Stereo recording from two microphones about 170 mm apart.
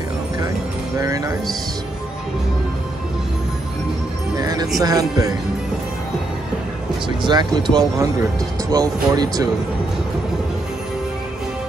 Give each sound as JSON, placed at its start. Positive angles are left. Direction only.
{"t": 0.9, "sound": "speech", "side_deg": -20}
{"t": 4.4, "sound": "music", "side_deg": -25}
{"t": 4.8, "sound": "speech", "side_deg": -20}
{"t": 7.2, "sound": "speech", "side_deg": -25}